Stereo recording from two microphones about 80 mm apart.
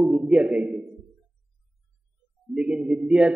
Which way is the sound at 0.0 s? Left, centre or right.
Centre.